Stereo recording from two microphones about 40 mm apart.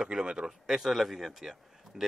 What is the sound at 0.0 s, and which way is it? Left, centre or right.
Speech, centre.